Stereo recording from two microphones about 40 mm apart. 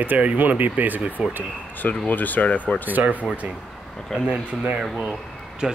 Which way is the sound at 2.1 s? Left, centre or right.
Left.